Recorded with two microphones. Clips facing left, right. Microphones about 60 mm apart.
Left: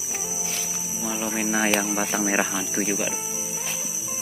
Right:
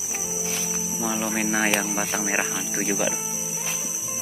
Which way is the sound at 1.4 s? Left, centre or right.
Right.